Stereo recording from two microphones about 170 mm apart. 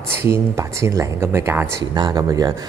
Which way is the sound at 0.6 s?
15° right (ahead or behind).